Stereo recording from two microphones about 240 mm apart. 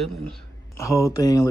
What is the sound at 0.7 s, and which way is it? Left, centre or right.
Speech, centre.